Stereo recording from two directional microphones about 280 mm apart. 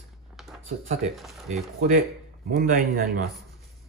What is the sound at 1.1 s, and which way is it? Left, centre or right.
Speech, centre.